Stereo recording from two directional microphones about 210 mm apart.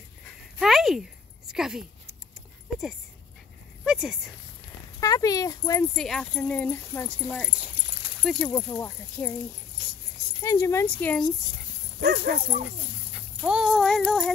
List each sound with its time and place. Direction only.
0.6 s a sound: centre (ahead or behind)
1.5 s speech: 5° right (ahead or behind)
3.8 s speech: 5° right (ahead or behind)
5.0 s speech: 15° left (ahead or behind)
5.9 s speech: centre (ahead or behind)
8.2 s speech: 5° left (ahead or behind)
10.4 s speech: 15° left (ahead or behind)
12.0 s speech: 50° right (ahead or behind)
13.1 s speech: centre (ahead or behind)